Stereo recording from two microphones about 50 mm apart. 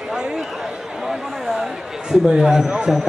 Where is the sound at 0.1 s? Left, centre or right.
Centre.